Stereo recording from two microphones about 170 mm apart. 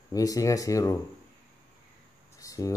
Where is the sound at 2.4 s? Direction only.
20° left (ahead or behind).